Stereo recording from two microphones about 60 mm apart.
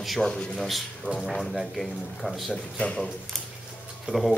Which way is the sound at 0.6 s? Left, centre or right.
Centre.